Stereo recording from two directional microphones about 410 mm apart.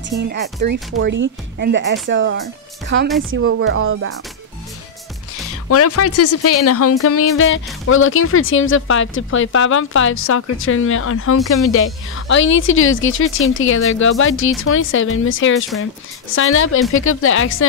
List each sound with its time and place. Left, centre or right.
0.2 s speech: right
5.7 s speech: left